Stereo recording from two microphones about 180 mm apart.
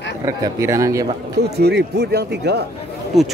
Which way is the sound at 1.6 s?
65° right (ahead or behind).